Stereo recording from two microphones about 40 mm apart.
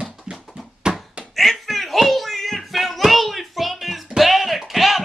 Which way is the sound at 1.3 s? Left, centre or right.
Centre.